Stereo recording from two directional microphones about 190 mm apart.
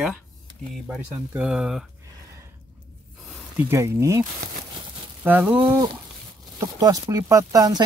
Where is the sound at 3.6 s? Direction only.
15° right (ahead or behind).